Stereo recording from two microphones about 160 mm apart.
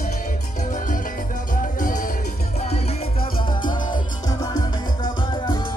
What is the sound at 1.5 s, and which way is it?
Music, 55° left (ahead or behind).